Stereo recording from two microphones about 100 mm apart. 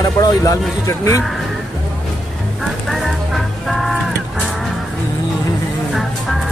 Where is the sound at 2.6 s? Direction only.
Centre (ahead or behind).